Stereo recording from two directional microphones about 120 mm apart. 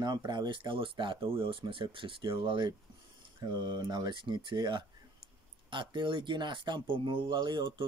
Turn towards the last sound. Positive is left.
turn(degrees=-40)  # may be behind; listen again after turning